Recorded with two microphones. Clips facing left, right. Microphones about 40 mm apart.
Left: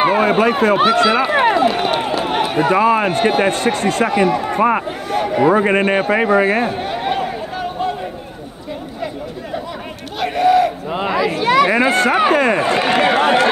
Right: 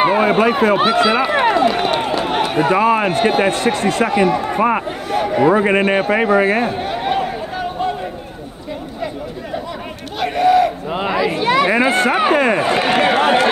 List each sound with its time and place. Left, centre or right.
0.0 s run: centre
0.8 s speech: centre
1.2 s run: centre
2.9 s a man's voice: centre
10.1 s crowd: centre
10.9 s speech: centre
11.6 s speech: centre